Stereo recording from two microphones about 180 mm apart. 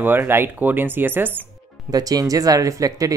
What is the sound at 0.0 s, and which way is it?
Speech, 10° right (ahead or behind).